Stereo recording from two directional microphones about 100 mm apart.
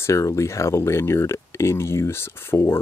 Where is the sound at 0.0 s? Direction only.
30° left (ahead or behind).